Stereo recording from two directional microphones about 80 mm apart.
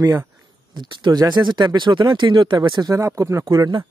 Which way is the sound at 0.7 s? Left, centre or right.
Right.